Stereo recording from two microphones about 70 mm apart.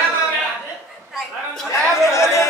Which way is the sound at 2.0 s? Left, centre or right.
Left.